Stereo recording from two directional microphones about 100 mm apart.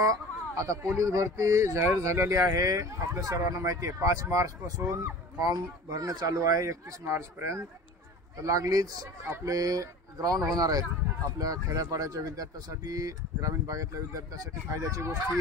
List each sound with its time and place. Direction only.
0.0 s speech: 35° right (ahead or behind)